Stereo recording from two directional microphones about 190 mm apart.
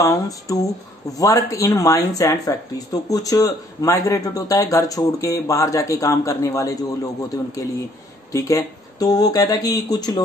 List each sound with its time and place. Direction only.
0.0 s speech: 15° left (ahead or behind)